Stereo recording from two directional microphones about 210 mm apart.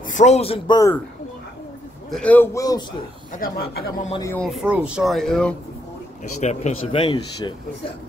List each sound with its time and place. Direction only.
0.1 s a man's voice: 35° left (ahead or behind); by 1.0 s 15° left (ahead or behind)
2.0 s speech: 5° left (ahead or behind)
3.3 s speech: 45° left (ahead or behind)
4.2 s speech: 10° left (ahead or behind)
4.5 s speech: 5° right (ahead or behind)
6.4 s a man's voice: 35° left (ahead or behind)